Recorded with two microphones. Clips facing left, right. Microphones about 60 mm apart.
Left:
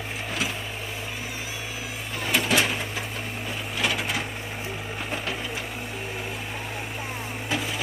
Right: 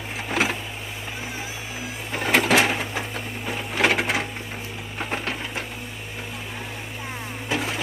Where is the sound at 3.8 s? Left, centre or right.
Right.